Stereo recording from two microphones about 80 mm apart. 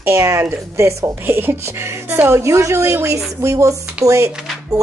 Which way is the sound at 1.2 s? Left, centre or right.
Right.